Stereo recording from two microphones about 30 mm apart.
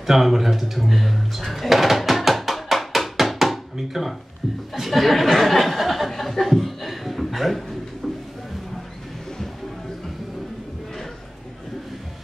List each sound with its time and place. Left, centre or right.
0.0 s speech: centre
0.7 s music: centre
3.7 s speech: centre